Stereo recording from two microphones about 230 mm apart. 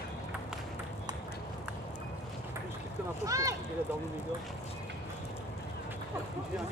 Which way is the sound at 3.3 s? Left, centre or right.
Centre.